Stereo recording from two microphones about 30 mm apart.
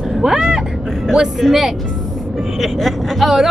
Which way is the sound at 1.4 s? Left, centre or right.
Centre.